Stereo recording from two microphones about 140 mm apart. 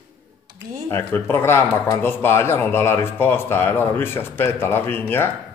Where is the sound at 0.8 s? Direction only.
20° left (ahead or behind).